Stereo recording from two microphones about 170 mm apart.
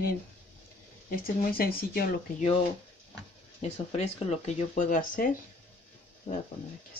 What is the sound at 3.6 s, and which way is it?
Speech, 40° left (ahead or behind).